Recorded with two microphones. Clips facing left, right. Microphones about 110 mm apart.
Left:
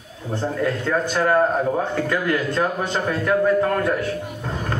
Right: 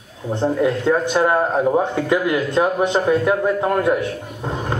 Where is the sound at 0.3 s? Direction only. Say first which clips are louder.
Right 5 dB; 20° right (ahead or behind).